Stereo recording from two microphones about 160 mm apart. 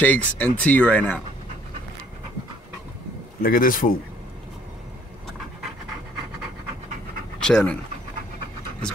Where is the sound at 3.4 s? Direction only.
60° left (ahead or behind).